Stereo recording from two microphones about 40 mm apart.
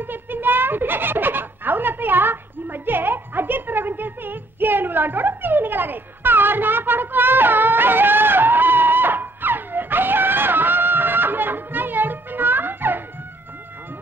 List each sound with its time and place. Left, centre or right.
0.0 s giggle: right